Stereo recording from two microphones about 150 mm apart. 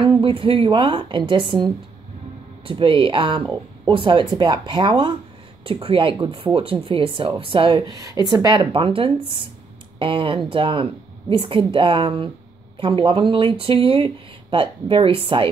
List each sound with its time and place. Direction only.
0.0 s speech: 35° right (ahead or behind)
2.6 s speech: 35° right (ahead or behind)